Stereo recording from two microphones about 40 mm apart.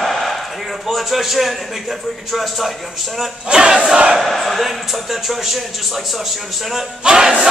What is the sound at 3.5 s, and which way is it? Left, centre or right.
Battle cry, right.